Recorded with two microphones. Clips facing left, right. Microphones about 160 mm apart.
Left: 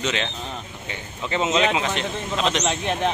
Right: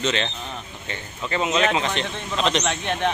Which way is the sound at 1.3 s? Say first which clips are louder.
Left 1 dB; 20° left (ahead or behind).